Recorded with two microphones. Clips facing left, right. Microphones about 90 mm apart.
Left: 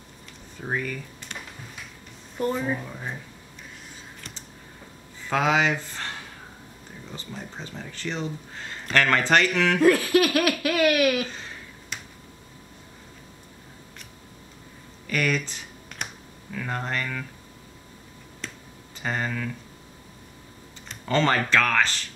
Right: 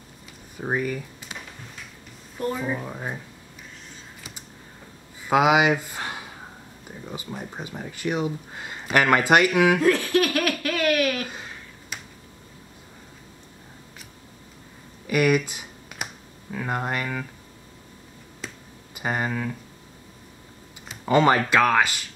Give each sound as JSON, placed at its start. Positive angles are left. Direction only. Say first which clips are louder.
{"t": 0.6, "sound": "speech", "louder": "right 4 dB", "side_deg": -15}
{"t": 2.8, "sound": "speech", "louder": "right 3 dB", "side_deg": -25}
{"t": 4.2, "sound": "computer keyboard", "louder": "even", "side_deg": -10}
{"t": 5.2, "sound": "speech", "louder": "right 4 dB", "side_deg": -10}
{"t": 9.8, "sound": "speech", "louder": "left 2 dB", "side_deg": 5}
{"t": 11.9, "sound": "a sound", "louder": "even", "side_deg": -5}
{"t": 15.0, "sound": "computer keyboard", "louder": "right 5 dB", "side_deg": -10}
{"t": 16.5, "sound": "speech", "louder": "right 2 dB", "side_deg": -15}
{"t": 18.4, "sound": "finger snapping", "louder": "right 1 dB", "side_deg": -5}
{"t": 18.9, "sound": "speech", "louder": "right 2 dB", "side_deg": -10}
{"t": 21.0, "sound": "speech", "louder": "right 4 dB", "side_deg": -15}